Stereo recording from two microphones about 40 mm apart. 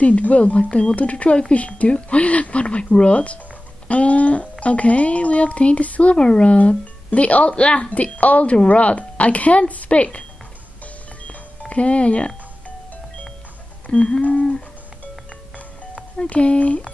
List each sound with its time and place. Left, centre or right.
0.0 s speech: left
6.1 s speech: left
11.7 s speech: left
13.8 s a sound: left
16.3 s speech: left